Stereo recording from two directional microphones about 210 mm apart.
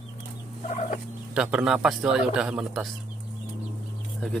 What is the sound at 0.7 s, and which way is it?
Fowl, 35° left (ahead or behind).